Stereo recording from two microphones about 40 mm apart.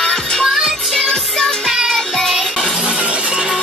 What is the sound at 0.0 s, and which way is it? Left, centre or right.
Music, centre.